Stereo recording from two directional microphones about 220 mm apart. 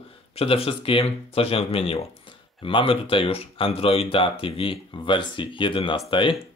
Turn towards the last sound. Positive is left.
turn(degrees=25)  # may be behind; listen again after turning